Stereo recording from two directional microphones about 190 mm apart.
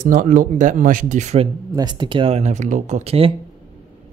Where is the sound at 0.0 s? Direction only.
45° right (ahead or behind).